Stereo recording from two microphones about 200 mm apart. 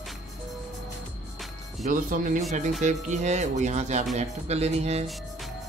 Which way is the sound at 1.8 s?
40° right (ahead or behind).